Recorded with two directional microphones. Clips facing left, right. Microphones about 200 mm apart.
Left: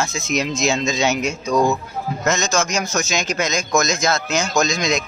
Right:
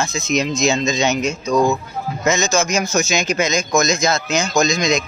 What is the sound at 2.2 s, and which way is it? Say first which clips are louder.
Speech: right 3 dB; centre (ahead or behind).